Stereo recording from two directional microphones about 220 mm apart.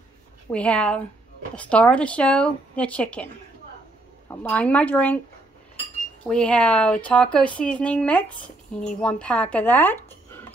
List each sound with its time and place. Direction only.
0.5 s speech: 5° left (ahead or behind)
4.3 s speech: 5° left (ahead or behind)
6.2 s speech: 5° left (ahead or behind)